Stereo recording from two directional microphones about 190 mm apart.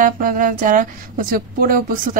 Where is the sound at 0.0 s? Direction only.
45° right (ahead or behind).